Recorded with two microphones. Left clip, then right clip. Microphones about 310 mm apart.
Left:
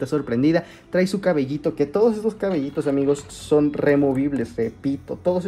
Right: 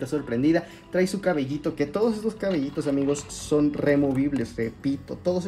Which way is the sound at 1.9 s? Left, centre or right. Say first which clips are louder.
Left 7 dB; left.